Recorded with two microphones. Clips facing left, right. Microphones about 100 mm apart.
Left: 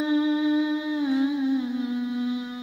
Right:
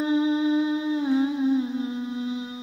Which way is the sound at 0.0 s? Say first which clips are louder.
Even; 30° right (ahead or behind).